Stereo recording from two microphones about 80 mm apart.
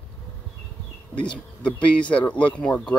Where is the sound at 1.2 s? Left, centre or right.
Centre.